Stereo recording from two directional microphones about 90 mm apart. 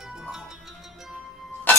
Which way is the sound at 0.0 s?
5° right (ahead or behind).